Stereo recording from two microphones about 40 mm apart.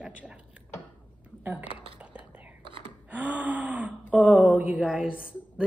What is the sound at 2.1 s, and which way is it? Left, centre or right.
Whispering, right.